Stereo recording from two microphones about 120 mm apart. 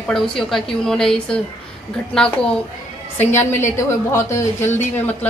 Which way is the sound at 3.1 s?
20° left (ahead or behind).